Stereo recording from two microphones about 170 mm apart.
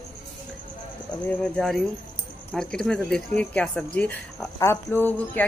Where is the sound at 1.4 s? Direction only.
5° left (ahead or behind).